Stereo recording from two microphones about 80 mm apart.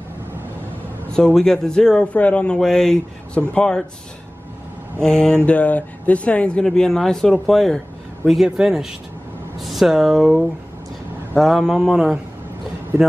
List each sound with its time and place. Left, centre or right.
1.1 s speech: centre
5.0 s speech: centre
8.5 s speech: centre